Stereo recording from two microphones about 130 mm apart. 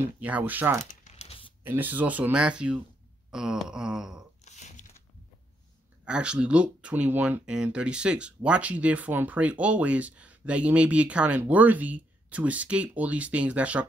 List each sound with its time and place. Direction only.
0.0 s speech: 10° right (ahead or behind)
0.8 s a sound: 60° left (ahead or behind)
1.6 s speech: 15° right (ahead or behind)
3.3 s a sound: 5° right (ahead or behind)
4.5 s tearing: 65° left (ahead or behind)
6.0 s speech: 5° right (ahead or behind)